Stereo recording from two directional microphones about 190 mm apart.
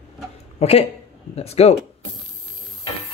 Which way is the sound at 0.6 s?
30° left (ahead or behind).